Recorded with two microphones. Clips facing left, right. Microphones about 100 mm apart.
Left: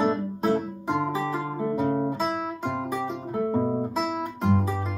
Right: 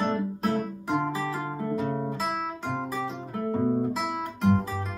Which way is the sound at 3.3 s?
20° left (ahead or behind).